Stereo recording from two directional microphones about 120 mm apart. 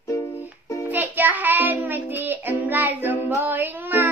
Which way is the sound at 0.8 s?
15° right (ahead or behind).